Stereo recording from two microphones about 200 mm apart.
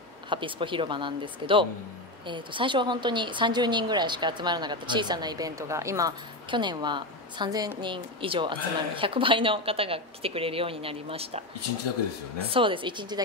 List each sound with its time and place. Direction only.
0.3 s a woman's voice: 25° right (ahead or behind)
12.4 s a woman's voice: 25° right (ahead or behind)